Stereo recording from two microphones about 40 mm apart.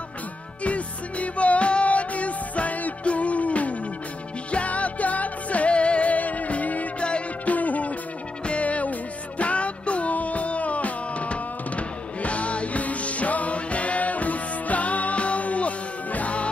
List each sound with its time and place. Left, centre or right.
0.7 s music: left
7.0 s music: left
7.5 s music: left